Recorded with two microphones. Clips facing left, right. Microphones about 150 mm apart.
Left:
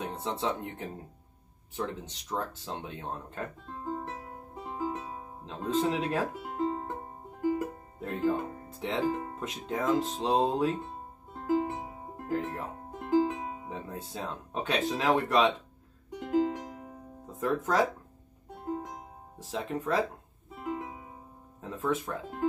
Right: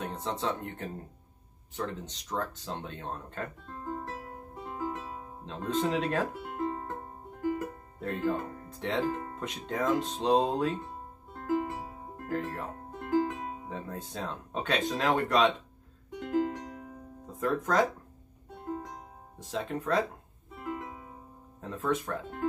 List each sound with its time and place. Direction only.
0.1 s speech: 10° left (ahead or behind)
4.6 s music: 15° left (ahead or behind)
5.7 s speech: 5° left (ahead or behind)
6.6 s music: 20° left (ahead or behind)
9.4 s speech: 5° left (ahead or behind)
11.6 s music: 20° left (ahead or behind)
12.2 s speech: 15° left (ahead or behind)
16.2 s music: 20° left (ahead or behind)
17.4 s speech: 5° left (ahead or behind)
19.5 s speech: 5° left (ahead or behind)
20.6 s music: 15° left (ahead or behind)
21.5 s speech: 5° left (ahead or behind)